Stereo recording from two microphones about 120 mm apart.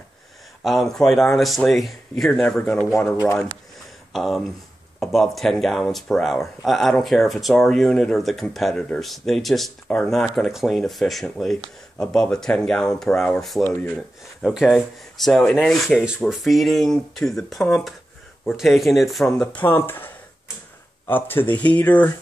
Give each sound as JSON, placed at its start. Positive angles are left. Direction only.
{"t": 0.7, "sound": "speech", "side_deg": 0}
{"t": 3.1, "sound": "speech", "side_deg": 25}
{"t": 4.1, "sound": "speech", "side_deg": 0}
{"t": 21.1, "sound": "speech", "side_deg": 15}